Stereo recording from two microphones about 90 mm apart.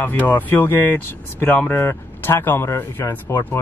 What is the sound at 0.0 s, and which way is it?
Speech, 20° left (ahead or behind).